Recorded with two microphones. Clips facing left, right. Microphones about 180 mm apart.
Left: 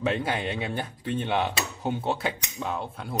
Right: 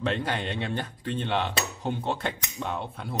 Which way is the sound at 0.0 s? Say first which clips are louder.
Left 2 dB; 10° left (ahead or behind).